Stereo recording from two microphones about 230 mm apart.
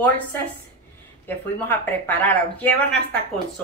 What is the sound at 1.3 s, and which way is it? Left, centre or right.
A woman's voice, centre.